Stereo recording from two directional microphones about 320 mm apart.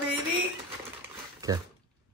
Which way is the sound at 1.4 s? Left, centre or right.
Centre.